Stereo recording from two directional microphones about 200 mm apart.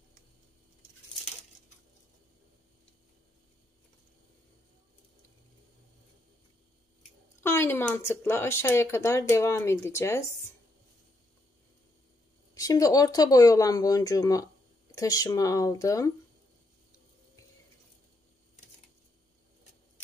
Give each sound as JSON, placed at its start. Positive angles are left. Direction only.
{"t": 7.4, "sound": "speech", "side_deg": 10}
{"t": 12.5, "sound": "speech", "side_deg": 15}